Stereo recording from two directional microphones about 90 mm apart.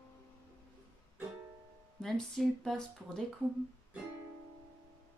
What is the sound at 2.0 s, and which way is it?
Music, 5° left (ahead or behind).